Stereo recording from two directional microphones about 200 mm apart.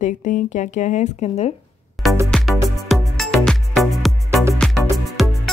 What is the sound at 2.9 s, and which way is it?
Music, centre (ahead or behind).